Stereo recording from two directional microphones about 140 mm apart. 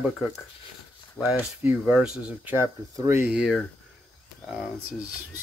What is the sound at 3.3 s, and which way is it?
Speech, 5° right (ahead or behind).